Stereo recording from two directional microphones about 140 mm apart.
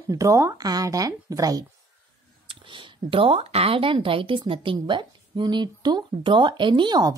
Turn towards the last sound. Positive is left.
turn(degrees=-30)  # may be behind; listen again after turning